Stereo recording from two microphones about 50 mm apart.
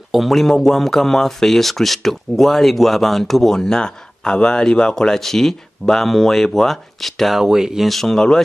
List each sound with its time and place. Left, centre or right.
0.1 s speech: centre
7.3 s speech: centre
7.9 s speech: centre